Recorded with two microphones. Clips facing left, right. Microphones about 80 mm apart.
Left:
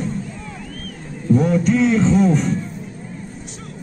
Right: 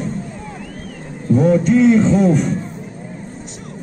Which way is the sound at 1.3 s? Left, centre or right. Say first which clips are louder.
Right 3 dB; centre.